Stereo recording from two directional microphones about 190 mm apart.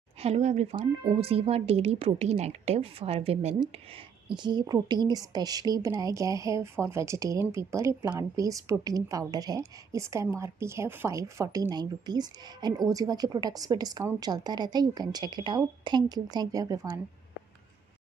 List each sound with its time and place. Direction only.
0.2 s a woman's voice: 35° right (ahead or behind); by 17.0 s 20° right (ahead or behind)